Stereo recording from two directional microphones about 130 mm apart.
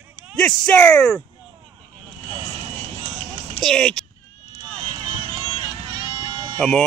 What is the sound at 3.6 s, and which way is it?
Speech, 5° left (ahead or behind).